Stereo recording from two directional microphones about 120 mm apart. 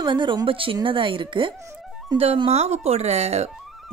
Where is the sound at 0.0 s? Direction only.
40° right (ahead or behind).